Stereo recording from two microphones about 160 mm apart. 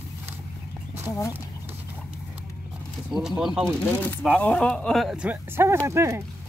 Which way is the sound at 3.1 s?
5° right (ahead or behind).